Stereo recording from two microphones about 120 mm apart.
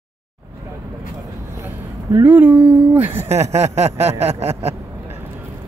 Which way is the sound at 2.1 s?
15° right (ahead or behind).